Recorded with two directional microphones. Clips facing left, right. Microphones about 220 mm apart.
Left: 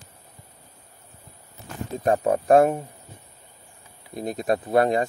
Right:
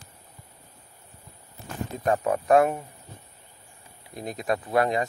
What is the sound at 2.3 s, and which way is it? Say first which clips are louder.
Speech: left 3 dB; 35° left (ahead or behind).